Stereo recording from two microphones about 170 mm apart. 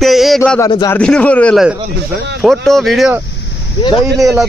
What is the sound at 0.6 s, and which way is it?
Speech, 20° left (ahead or behind).